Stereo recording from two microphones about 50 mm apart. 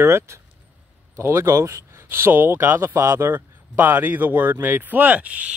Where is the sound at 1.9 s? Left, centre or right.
Right.